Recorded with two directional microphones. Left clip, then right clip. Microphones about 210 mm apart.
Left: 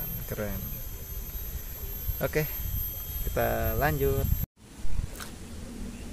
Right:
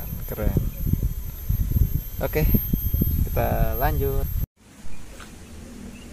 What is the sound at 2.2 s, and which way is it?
Speech, 20° right (ahead or behind).